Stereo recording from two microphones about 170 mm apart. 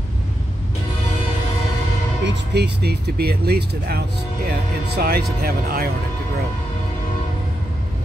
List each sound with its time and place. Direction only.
2.2 s speech: 80° right; by 5.9 s 60° right (ahead or behind)